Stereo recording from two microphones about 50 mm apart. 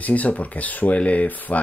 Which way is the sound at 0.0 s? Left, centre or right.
Left.